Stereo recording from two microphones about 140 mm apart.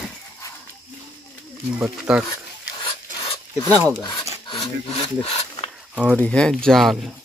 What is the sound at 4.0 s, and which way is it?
Speech, 30° left (ahead or behind).